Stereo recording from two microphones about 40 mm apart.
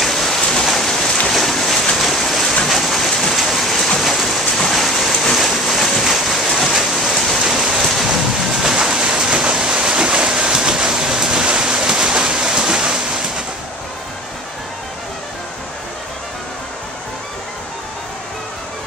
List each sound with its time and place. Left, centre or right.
0.0 s rain: centre
2.0 s stream: centre
2.7 s rain: centre
4.7 s a sound: centre
6.7 s rain: centre
7.8 s waves: centre
8.7 s a sound: centre